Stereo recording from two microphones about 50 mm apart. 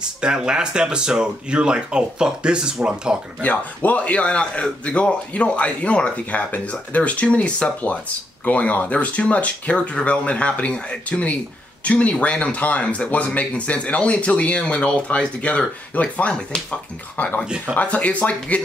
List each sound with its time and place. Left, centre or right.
0.2 s speech: centre
3.4 s speech: left
17.2 s speech: left